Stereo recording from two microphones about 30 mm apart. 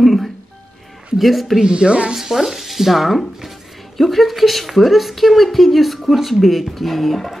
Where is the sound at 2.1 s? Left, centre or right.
Centre.